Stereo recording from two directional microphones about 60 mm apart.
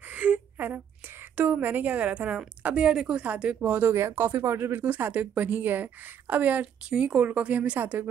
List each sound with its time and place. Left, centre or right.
0.1 s a sound: right
1.3 s a woman's voice: right
4.1 s speech: right
4.8 s a woman's voice: right